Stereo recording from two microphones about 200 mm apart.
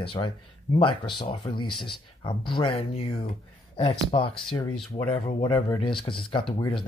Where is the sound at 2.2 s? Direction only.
25° left (ahead or behind).